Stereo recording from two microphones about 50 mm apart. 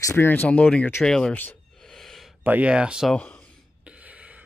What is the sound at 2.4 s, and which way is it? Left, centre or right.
Speech, right.